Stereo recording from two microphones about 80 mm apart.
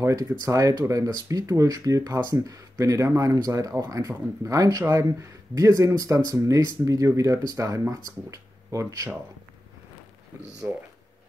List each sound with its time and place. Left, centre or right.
0.0 s speech: right